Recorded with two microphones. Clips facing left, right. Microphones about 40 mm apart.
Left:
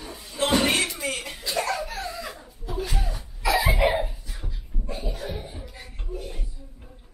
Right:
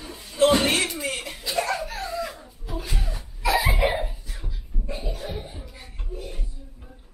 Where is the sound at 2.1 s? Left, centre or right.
Centre.